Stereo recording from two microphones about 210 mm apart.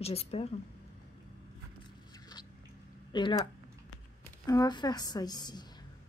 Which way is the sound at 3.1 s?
20° left (ahead or behind).